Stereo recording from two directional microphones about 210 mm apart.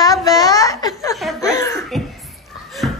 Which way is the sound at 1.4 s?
15° left (ahead or behind).